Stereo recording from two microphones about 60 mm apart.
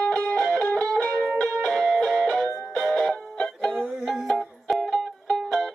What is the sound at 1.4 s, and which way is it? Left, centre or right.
Music, centre.